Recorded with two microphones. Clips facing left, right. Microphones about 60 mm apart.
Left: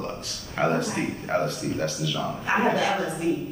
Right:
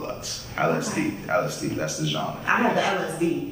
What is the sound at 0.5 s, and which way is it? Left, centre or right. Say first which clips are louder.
Speech: right 1 dB; centre.